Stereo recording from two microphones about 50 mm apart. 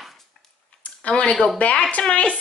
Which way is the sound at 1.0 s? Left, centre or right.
Left.